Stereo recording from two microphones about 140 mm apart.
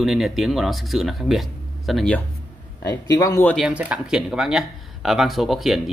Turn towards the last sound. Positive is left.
turn(degrees=0)  # may be behind; listen again after turning